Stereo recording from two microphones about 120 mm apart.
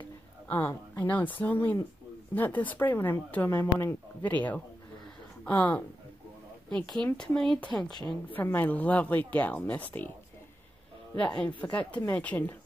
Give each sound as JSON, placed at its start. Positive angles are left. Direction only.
{"t": 0.5, "sound": "speech", "side_deg": 15}
{"t": 11.1, "sound": "speech", "side_deg": 10}